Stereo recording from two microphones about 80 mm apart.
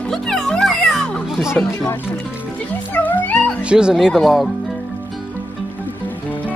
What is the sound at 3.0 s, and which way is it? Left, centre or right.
Cat, left.